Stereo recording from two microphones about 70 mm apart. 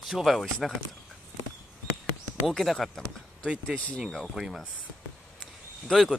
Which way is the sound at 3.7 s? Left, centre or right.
Centre.